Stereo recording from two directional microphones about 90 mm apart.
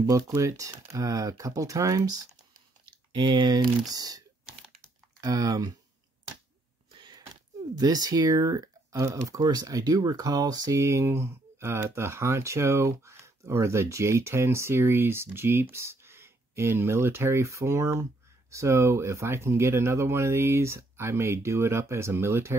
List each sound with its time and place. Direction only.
0.0 s speech: 40° right (ahead or behind)
2.8 s speech: 60° right (ahead or behind); by 4.2 s 45° right (ahead or behind)
5.2 s speech: 45° right (ahead or behind)
6.9 s a sound: 60° right (ahead or behind)
7.7 s speech: 45° right (ahead or behind)
10.8 s speech: 35° right (ahead or behind)